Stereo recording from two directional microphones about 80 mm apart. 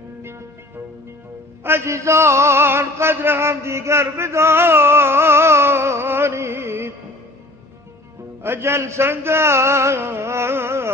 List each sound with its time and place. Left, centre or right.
1.6 s music: right
8.4 s music: right